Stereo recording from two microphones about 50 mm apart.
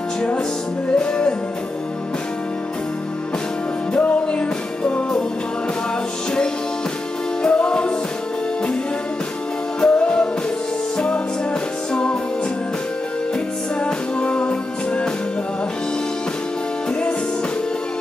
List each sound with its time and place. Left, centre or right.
0.8 s music: centre
3.9 s music: left
7.4 s music: centre
9.8 s music: left
11.9 s music: centre
13.8 s music: centre